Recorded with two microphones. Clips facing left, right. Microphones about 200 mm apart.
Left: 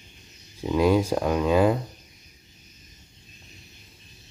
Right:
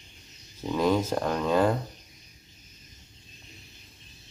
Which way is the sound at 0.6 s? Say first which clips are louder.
Left 4 dB; 10° left (ahead or behind).